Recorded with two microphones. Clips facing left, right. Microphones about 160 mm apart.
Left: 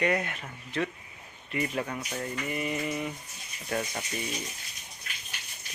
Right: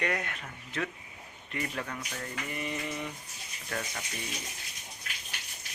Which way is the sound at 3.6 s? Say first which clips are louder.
Left 5 dB; 20° left (ahead or behind).